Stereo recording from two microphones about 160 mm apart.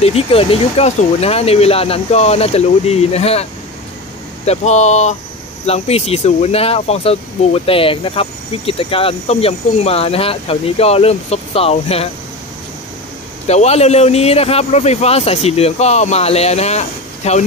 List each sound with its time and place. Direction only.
0.0 s speech: 35° left (ahead or behind)
4.5 s speech: 45° left (ahead or behind)
13.5 s speech: 40° left (ahead or behind)